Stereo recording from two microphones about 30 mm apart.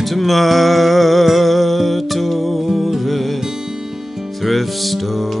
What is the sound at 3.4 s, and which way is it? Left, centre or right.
Music, centre.